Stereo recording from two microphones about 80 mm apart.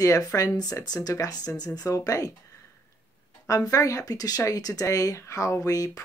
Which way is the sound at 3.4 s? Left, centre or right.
Left.